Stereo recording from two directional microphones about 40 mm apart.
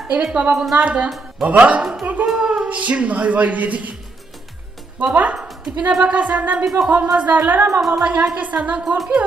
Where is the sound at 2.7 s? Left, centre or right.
Right.